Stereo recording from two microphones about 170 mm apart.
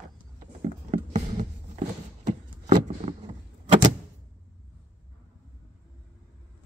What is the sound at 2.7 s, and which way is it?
Vehicle, 40° right (ahead or behind).